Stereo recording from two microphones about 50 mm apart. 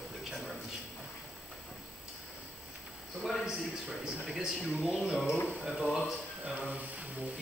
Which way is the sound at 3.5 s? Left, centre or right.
Centre.